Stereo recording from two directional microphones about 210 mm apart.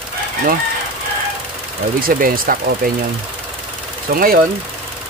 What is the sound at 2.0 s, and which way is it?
Speech, 45° right (ahead or behind).